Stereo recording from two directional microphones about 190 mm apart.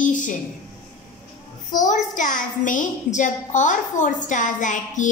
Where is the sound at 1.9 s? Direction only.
40° left (ahead or behind).